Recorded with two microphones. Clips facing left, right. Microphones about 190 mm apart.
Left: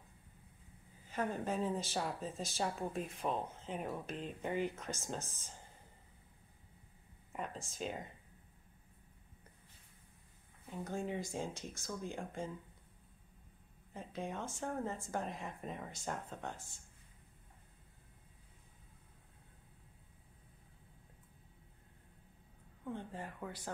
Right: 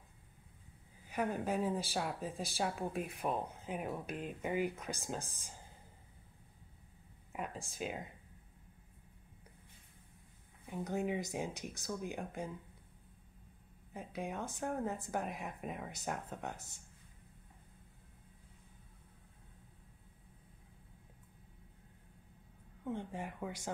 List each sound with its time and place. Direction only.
1.1 s speech: 10° right (ahead or behind)
7.3 s a sound: 5° right (ahead or behind)
7.7 s speech: 5° right (ahead or behind)
10.7 s speech: 15° right (ahead or behind)
13.9 s speech: 10° right (ahead or behind)
22.9 s speech: 15° right (ahead or behind)